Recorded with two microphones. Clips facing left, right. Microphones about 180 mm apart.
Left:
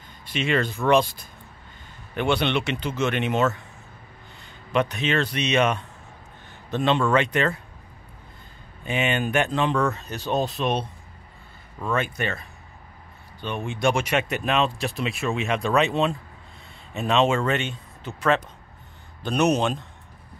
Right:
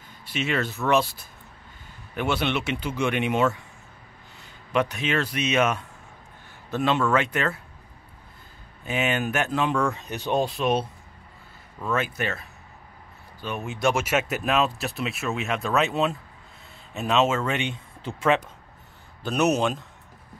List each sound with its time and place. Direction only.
0.2 s speech: 5° right (ahead or behind)
4.7 s speech: 10° right (ahead or behind)
8.8 s speech: 5° right (ahead or behind)
11.9 s speech: 5° right (ahead or behind)
18.0 s speech: 20° right (ahead or behind)
19.2 s speech: 5° right (ahead or behind)